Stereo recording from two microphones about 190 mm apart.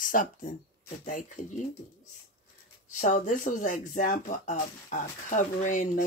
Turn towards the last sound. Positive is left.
turn(degrees=45)  # may be behind; listen again after turning